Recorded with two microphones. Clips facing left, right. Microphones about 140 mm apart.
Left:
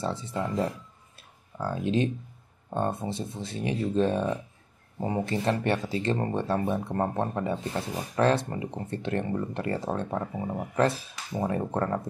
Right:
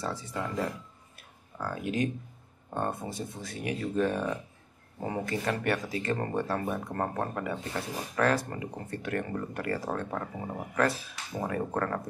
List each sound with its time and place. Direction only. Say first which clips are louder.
0.0 s speech: left 4 dB; 25° left (ahead or behind)
1.1 s a sound: left 3 dB; 30° left (ahead or behind)
2.7 s speech: left 4 dB; 25° left (ahead or behind)